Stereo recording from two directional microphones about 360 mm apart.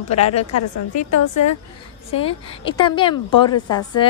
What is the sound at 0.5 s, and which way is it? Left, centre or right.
A woman's voice, left.